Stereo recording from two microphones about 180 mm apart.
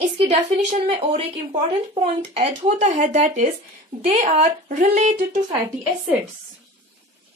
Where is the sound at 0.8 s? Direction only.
30° right (ahead or behind).